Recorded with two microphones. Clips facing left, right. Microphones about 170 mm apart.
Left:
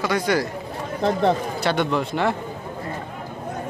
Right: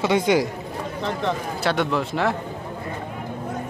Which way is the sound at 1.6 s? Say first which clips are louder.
Left 1 dB; centre (ahead or behind).